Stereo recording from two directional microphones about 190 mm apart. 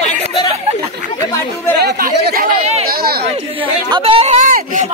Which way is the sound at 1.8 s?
60° right (ahead or behind).